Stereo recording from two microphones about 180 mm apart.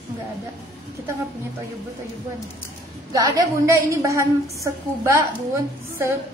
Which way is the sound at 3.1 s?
20° right (ahead or behind).